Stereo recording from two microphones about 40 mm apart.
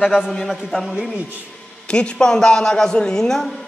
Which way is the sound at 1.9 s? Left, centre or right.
Left.